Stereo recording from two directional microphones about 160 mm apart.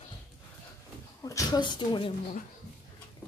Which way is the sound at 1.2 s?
25° left (ahead or behind).